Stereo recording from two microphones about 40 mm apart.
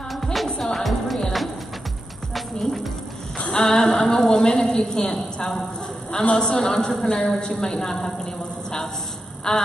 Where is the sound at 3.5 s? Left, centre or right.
Centre.